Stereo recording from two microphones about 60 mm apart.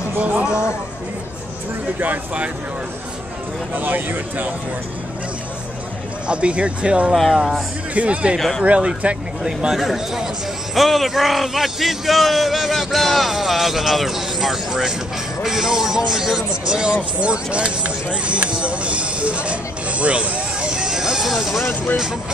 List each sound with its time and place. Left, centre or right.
0.2 s speech: right
2.0 s speech: right
3.7 s speech: right
6.2 s speech: centre
8.4 s a man's voice: centre
8.6 s a man's voice: centre